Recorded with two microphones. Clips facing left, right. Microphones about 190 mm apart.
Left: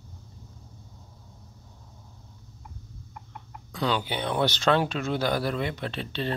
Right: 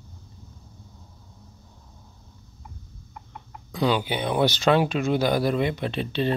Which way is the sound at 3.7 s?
10° right (ahead or behind).